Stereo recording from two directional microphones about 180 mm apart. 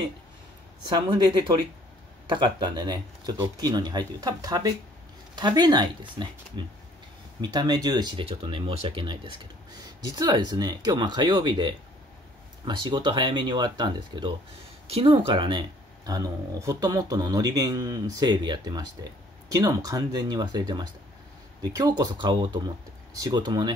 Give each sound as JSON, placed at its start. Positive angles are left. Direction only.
{"t": 0.8, "sound": "speech", "side_deg": -25}